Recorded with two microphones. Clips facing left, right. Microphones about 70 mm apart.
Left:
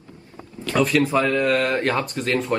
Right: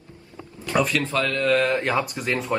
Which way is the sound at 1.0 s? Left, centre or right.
Centre.